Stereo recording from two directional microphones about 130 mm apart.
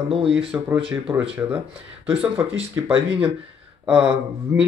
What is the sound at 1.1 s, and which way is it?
Speech, 15° right (ahead or behind).